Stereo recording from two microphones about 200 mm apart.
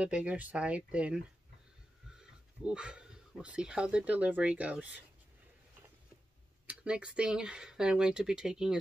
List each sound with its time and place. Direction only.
0.0 s speech: 5° right (ahead or behind)
6.7 s speech: 5° right (ahead or behind)